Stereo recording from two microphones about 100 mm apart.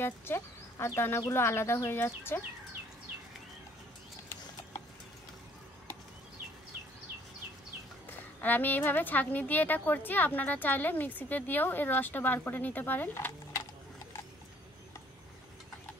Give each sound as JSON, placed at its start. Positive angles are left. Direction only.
{"t": 0.0, "sound": "speech", "side_deg": 25}
{"t": 8.1, "sound": "a woman's voice", "side_deg": 20}